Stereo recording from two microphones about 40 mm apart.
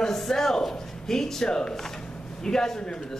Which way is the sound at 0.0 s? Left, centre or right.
Centre.